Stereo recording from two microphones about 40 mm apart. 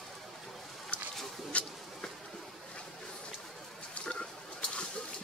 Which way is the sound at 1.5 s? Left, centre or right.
Left.